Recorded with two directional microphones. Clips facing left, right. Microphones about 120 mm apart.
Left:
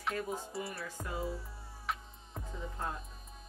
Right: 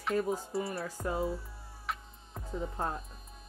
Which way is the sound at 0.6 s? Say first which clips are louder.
Right 6 dB; 30° right (ahead or behind).